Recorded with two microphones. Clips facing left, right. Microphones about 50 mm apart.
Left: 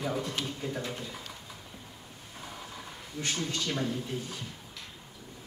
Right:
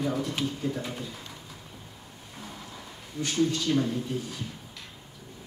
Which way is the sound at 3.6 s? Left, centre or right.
Centre.